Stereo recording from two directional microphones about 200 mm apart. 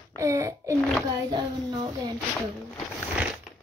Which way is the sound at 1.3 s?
20° right (ahead or behind).